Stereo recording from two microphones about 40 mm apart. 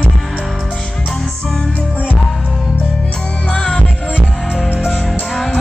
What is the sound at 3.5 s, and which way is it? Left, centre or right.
Music, left.